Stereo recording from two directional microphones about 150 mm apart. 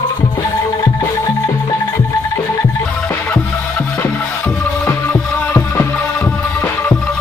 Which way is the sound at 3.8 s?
15° left (ahead or behind).